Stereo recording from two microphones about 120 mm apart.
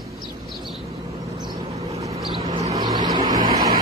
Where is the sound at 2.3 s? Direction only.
50° right (ahead or behind).